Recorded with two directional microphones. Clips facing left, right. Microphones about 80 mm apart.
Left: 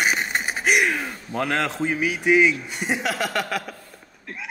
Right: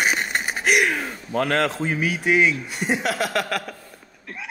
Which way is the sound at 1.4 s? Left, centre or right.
Centre.